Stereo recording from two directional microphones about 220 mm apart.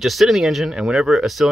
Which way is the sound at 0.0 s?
Centre (ahead or behind).